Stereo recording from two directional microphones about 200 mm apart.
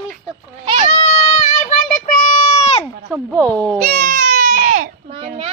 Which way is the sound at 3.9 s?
50° right (ahead or behind).